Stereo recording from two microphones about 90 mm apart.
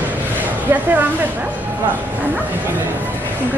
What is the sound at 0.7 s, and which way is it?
Speech, 20° right (ahead or behind).